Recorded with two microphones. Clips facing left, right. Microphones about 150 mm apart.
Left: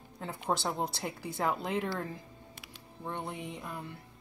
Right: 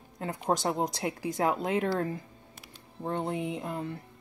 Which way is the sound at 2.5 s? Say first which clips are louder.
Right 3 dB; 40° right (ahead or behind).